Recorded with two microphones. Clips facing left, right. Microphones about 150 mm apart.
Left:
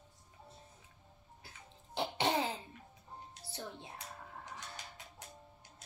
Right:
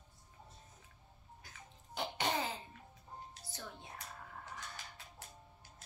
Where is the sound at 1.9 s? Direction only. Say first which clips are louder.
Left 4 dB; 30° left (ahead or behind).